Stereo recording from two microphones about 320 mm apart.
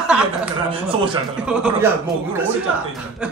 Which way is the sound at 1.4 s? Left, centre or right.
Centre.